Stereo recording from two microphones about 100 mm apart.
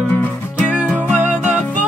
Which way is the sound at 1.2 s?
15° right (ahead or behind).